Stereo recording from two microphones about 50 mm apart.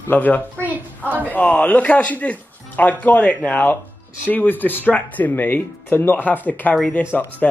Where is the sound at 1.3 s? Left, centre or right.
Left.